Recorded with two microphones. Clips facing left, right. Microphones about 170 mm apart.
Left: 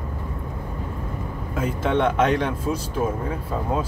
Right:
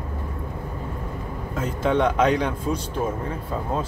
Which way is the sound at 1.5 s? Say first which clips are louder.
Even; 5° left (ahead or behind).